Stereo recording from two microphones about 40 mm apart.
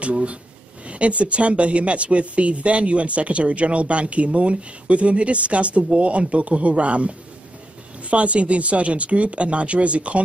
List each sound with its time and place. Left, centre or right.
0.0 s speech: right